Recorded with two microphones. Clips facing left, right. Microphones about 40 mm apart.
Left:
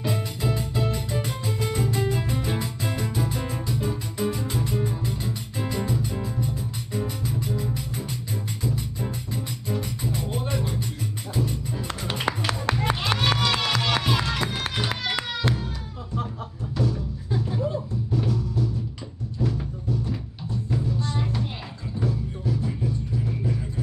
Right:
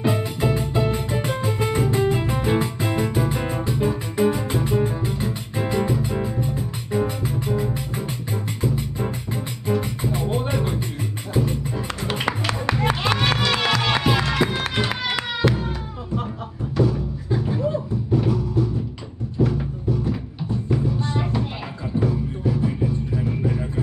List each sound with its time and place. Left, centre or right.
0.0 s music: right
16.7 s music: centre
18.1 s music: centre